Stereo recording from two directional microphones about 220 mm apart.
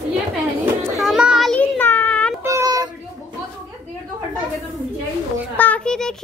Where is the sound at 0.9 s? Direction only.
Centre (ahead or behind).